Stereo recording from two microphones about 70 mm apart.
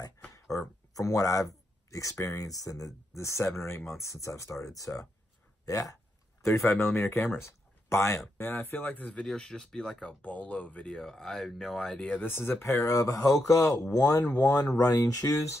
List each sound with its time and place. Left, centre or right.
0.9 s speech: left
6.4 s speech: left
9.0 s speech: centre
12.0 s speech: left
12.7 s speech: left